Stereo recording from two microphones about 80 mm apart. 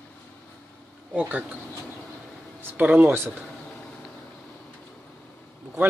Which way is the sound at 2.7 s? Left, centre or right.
Centre.